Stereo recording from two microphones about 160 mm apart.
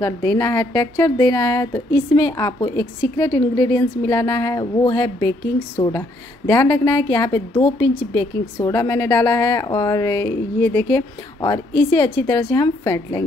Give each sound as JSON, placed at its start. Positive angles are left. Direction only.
{"t": 0.0, "sound": "a woman's voice", "side_deg": 15}
{"t": 7.5, "sound": "a woman's voice", "side_deg": 35}
{"t": 8.5, "sound": "a woman's voice", "side_deg": 20}